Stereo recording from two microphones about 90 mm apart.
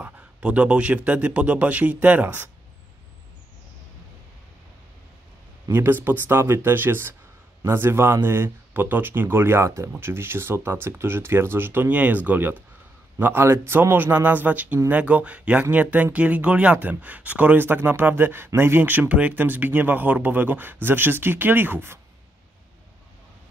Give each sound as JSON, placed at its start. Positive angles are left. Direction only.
{"t": 0.0, "sound": "a man's voice", "side_deg": -10}
{"t": 5.7, "sound": "a man's voice", "side_deg": -20}